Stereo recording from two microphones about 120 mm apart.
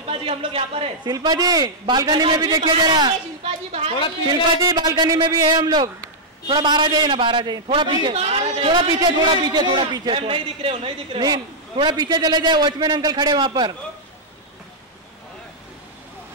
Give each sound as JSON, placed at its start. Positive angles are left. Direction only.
{"t": 0.1, "sound": "speech", "side_deg": -50}
{"t": 1.0, "sound": "a man's voice", "side_deg": -35}
{"t": 3.4, "sound": "a woman's voice", "side_deg": -60}
{"t": 4.3, "sound": "a man's voice", "side_deg": -35}
{"t": 8.2, "sound": "a sound", "side_deg": -55}
{"t": 9.5, "sound": "a man's voice", "side_deg": -35}
{"t": 11.2, "sound": "a man's voice", "side_deg": -35}